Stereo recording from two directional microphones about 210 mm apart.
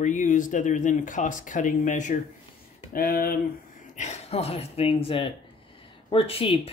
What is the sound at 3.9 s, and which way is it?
Speech, 30° left (ahead or behind).